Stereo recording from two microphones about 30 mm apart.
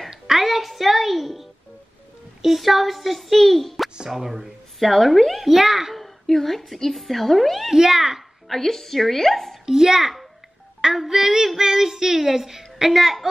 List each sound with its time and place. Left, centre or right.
0.3 s music: centre
2.4 s speech: centre
5.5 s speech: centre
5.9 s a sound: centre
6.9 s speech: centre
7.7 s speech: centre
8.5 s a woman's voice: centre
9.7 s speech: centre